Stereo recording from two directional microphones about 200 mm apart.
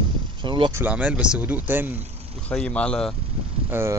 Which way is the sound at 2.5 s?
5° left (ahead or behind).